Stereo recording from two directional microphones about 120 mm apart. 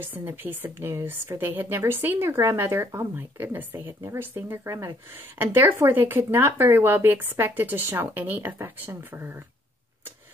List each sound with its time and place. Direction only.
0.0 s speech: 15° right (ahead or behind)